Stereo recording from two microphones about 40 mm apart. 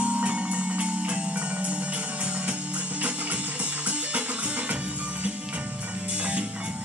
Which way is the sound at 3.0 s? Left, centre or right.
Right.